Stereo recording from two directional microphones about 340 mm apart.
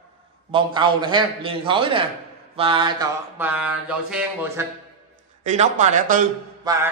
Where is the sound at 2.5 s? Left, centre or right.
Centre.